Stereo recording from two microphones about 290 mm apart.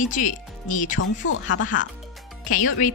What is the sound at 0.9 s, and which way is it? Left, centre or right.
Speech, left.